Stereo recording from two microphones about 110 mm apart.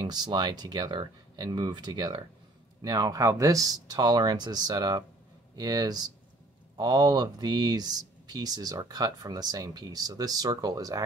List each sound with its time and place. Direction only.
0.0 s speech: 40° right (ahead or behind)